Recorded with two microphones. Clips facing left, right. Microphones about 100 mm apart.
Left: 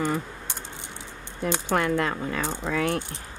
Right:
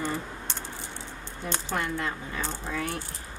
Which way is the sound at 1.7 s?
80° left.